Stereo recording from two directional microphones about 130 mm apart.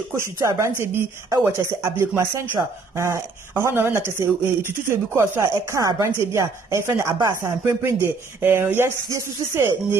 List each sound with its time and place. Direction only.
0.1 s a woman's voice: 20° right (ahead or behind)